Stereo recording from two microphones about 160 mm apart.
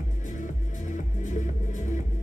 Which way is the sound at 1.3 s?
50° left (ahead or behind).